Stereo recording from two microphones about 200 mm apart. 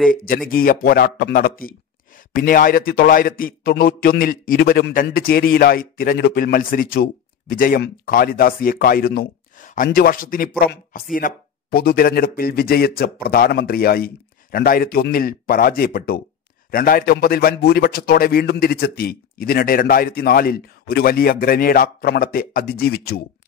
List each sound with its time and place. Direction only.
0.1 s a man's voice: 45° left (ahead or behind)